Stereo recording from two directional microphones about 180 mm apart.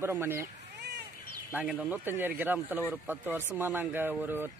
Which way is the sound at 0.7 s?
70° right (ahead or behind).